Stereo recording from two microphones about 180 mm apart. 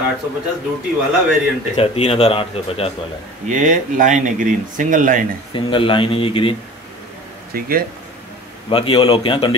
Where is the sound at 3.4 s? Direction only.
45° right (ahead or behind).